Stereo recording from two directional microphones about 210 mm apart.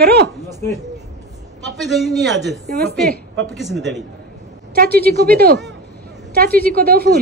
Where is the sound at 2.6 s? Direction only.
50° right (ahead or behind).